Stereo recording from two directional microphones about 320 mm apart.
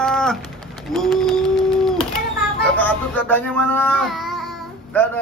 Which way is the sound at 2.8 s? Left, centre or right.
Centre.